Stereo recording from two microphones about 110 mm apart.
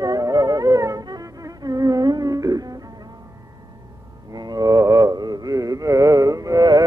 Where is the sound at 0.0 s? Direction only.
35° right (ahead or behind).